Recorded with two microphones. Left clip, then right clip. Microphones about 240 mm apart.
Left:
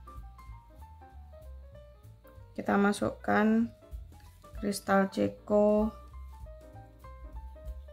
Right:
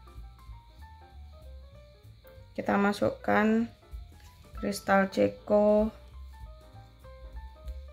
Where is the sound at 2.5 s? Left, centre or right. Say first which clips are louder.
Right 1 dB; centre.